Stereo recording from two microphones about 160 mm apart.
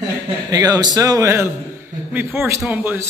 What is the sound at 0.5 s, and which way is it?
A man's voice, 25° right (ahead or behind).